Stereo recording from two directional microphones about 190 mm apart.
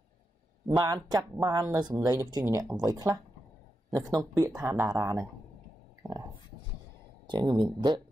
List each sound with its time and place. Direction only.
0.7 s speech: 20° right (ahead or behind)
7.2 s speech: 25° right (ahead or behind)